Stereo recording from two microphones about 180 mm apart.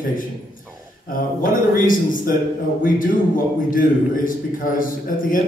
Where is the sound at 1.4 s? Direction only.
50° left (ahead or behind).